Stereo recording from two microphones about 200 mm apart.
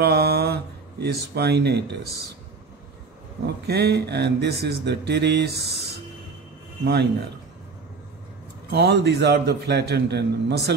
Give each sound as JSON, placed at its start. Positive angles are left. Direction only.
{"t": 0.0, "sound": "speech", "side_deg": -55}
{"t": 3.4, "sound": "speech", "side_deg": -55}
{"t": 6.9, "sound": "speech", "side_deg": -55}
{"t": 8.6, "sound": "speech", "side_deg": -55}